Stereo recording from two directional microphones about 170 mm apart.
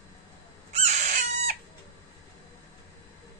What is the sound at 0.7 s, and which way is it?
Chicken, 40° right (ahead or behind).